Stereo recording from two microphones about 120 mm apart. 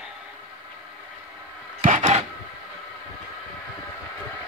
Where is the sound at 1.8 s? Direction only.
70° right (ahead or behind).